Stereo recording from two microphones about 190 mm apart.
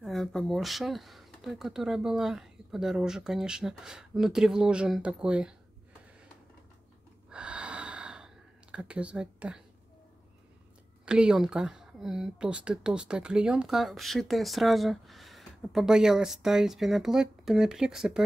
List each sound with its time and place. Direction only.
0.0 s speech: centre (ahead or behind)
7.2 s gasp: 5° right (ahead or behind)
8.7 s speech: 5° right (ahead or behind)
11.1 s speech: 5° right (ahead or behind)